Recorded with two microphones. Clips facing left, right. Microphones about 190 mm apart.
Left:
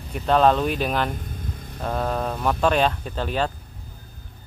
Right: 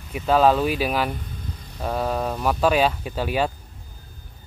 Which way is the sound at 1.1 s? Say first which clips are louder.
Left 2 dB; 50° left (ahead or behind).